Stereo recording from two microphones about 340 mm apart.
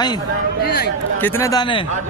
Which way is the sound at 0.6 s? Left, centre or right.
Left.